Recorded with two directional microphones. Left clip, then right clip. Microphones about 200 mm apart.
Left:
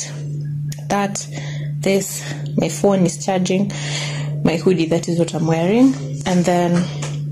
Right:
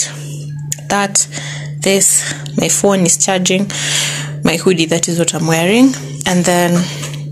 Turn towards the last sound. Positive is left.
turn(degrees=0)  # may be behind; listen again after turning